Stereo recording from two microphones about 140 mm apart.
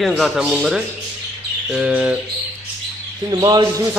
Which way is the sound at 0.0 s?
Centre (ahead or behind).